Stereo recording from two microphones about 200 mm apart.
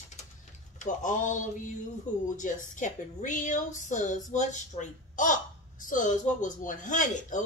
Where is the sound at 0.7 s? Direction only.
40° left (ahead or behind).